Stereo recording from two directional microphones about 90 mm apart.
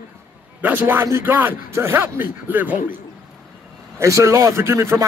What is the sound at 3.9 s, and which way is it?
Speech, 35° right (ahead or behind).